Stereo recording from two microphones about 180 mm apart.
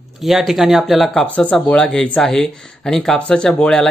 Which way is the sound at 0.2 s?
Centre (ahead or behind).